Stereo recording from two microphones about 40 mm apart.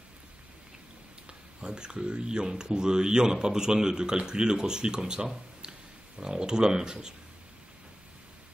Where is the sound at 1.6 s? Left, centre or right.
Centre.